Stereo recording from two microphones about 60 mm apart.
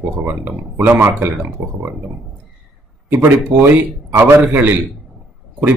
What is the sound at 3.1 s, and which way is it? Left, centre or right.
Speech, right.